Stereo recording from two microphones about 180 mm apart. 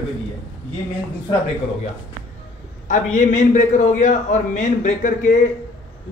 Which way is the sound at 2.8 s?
45° left (ahead or behind).